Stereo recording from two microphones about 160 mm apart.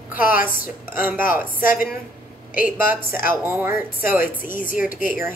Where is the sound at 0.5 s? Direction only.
60° left (ahead or behind).